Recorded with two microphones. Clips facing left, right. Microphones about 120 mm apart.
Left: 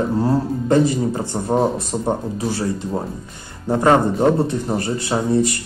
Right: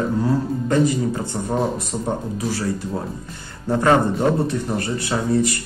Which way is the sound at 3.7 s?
25° left (ahead or behind).